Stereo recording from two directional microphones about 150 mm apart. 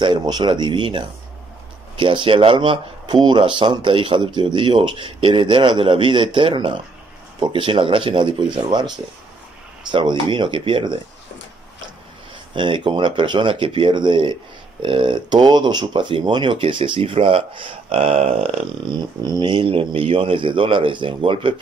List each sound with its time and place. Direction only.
0.0 s speech: 30° right (ahead or behind)
12.5 s speech: 30° right (ahead or behind)